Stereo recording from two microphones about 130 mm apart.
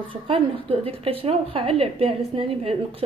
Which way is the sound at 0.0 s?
45° right (ahead or behind).